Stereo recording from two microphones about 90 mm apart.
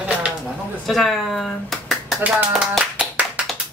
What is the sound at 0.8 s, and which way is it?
Speech, centre (ahead or behind).